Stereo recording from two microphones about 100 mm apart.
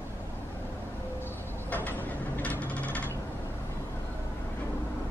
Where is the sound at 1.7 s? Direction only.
20° left (ahead or behind).